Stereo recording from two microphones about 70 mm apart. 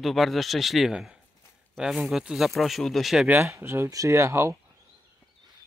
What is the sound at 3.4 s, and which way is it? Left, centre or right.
Speech, right.